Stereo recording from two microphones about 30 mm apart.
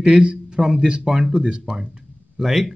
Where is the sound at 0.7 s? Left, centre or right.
Right.